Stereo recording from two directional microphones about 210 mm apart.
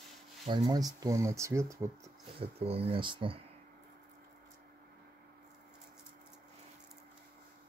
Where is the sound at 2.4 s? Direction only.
30° right (ahead or behind).